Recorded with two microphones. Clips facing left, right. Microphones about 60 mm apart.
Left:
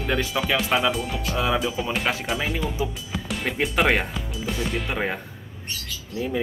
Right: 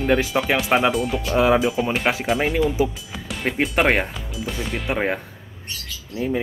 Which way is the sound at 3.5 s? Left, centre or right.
Right.